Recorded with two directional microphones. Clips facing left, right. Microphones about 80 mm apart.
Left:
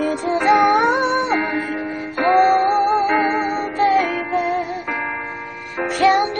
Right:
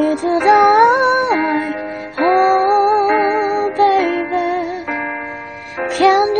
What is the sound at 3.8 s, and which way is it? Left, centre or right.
Music, right.